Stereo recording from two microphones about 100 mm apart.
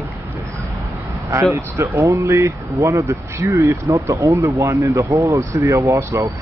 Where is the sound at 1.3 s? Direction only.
30° right (ahead or behind).